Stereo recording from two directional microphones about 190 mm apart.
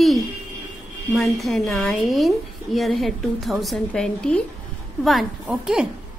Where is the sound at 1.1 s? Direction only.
Centre (ahead or behind).